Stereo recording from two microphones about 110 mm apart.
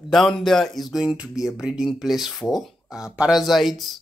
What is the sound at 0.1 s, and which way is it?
Speech, centre (ahead or behind).